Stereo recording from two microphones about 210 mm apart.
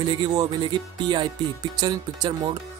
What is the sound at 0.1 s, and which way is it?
Speech, 20° right (ahead or behind).